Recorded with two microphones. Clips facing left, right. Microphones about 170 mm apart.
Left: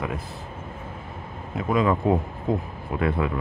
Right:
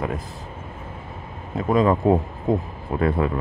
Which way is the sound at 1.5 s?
35° right (ahead or behind).